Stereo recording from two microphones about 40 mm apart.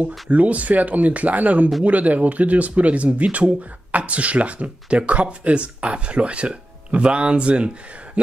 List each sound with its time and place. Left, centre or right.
0.0 s speech: right